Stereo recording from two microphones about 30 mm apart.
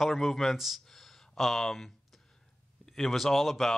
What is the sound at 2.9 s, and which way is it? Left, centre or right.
Speech, centre.